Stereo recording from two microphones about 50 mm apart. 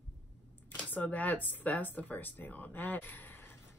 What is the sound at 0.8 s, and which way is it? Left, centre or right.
Speech, left.